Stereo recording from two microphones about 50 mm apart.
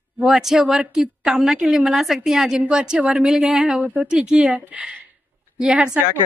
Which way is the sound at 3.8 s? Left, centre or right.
Right.